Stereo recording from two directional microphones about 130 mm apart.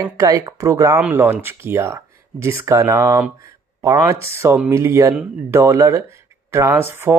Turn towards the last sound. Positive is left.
turn(degrees=-15)  # may be behind; listen again after turning